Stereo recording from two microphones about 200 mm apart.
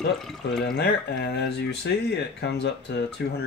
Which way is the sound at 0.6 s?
50° left (ahead or behind).